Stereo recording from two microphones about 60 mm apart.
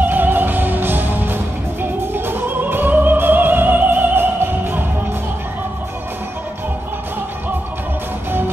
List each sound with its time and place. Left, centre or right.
0.0 s music: right